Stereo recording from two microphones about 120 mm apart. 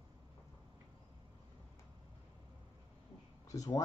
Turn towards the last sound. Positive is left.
turn(degrees=30)  # may be behind; listen again after turning